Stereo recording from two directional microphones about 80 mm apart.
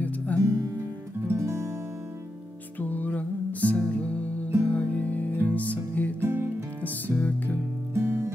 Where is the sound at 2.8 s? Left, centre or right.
Left.